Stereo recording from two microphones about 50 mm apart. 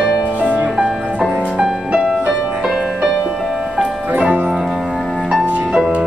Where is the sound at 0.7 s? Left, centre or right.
Centre.